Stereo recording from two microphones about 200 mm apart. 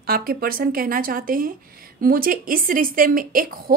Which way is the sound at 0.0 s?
50° right (ahead or behind).